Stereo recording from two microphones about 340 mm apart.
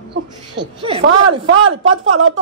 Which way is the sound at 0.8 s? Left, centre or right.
Centre.